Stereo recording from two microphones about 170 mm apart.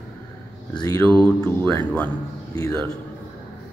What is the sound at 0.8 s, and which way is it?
Speech, 20° left (ahead or behind).